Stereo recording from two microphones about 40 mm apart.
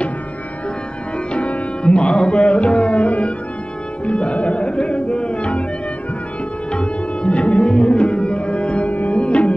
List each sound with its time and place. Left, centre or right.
1.3 s music: left
6.7 s tabla: left
8.8 s music: left